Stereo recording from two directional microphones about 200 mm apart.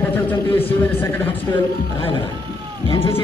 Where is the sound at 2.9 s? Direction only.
25° left (ahead or behind).